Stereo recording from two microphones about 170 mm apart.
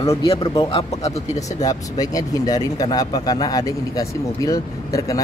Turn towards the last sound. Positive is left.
turn(degrees=20)  # may be behind; listen again after turning